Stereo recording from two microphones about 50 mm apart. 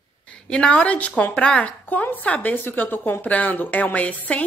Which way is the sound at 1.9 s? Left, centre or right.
Left.